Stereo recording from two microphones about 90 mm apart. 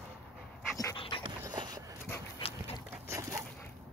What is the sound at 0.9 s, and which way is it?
Dog, 75° left (ahead or behind).